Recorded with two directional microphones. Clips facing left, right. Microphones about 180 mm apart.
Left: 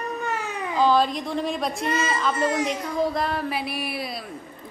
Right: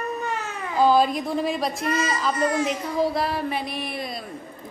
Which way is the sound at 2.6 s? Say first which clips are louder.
Right 1 dB; 5° right (ahead or behind).